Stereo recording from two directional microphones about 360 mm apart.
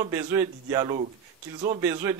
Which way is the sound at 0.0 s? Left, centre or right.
Centre.